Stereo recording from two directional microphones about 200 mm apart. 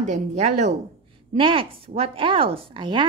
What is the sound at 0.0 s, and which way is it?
A woman's voice, 35° right (ahead or behind).